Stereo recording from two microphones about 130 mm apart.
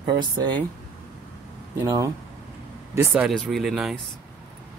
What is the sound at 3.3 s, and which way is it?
Speech, centre (ahead or behind).